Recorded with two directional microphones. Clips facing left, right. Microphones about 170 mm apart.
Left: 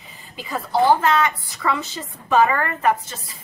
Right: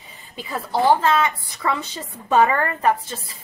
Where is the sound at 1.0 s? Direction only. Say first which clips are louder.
Even; 25° right (ahead or behind).